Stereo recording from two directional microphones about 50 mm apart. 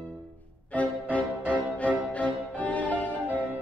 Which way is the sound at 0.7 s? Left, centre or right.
Left.